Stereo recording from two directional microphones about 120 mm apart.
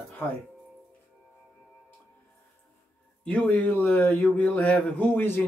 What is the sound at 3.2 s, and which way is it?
Speech, 10° left (ahead or behind).